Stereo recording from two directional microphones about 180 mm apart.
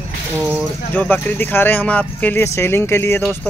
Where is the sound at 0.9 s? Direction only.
10° left (ahead or behind).